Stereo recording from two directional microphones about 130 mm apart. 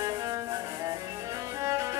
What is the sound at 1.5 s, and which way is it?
Music, 25° right (ahead or behind).